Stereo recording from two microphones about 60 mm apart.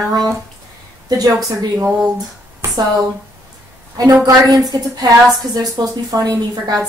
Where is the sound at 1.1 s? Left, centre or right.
Right.